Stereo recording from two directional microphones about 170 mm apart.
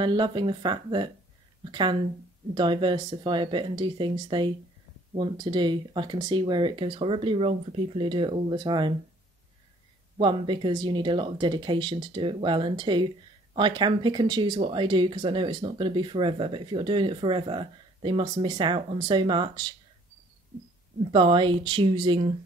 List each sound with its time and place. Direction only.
0.0 s speech: 25° right (ahead or behind)
10.1 s speech: 30° right (ahead or behind)
21.1 s speech: 30° right (ahead or behind)